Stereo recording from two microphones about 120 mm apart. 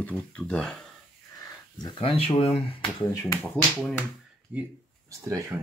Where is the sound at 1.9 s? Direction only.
50° left (ahead or behind).